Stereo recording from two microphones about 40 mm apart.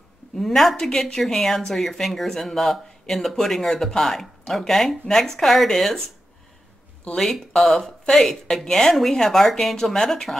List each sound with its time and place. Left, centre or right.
0.7 s speech: centre
7.2 s speech: centre
8.9 s speech: centre
9.9 s speech: centre